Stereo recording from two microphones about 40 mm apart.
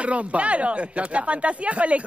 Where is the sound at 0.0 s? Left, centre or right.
Right.